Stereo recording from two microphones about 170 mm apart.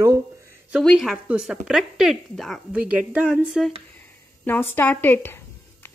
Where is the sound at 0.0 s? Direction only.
15° right (ahead or behind).